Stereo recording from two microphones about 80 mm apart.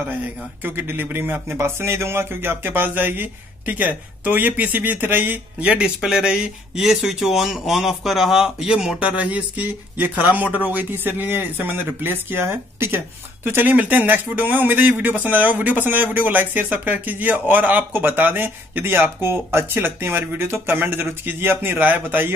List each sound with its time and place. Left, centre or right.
0.1 s speech: right
5.9 s speech: centre; by 22.3 s right